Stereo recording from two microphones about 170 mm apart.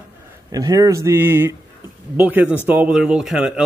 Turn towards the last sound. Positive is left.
turn(degrees=-5)  # may be behind; listen again after turning